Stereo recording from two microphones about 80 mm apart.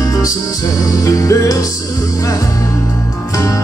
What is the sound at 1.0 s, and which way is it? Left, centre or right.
Music, left.